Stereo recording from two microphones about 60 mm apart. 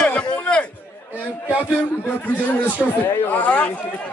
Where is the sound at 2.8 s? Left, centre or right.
Centre.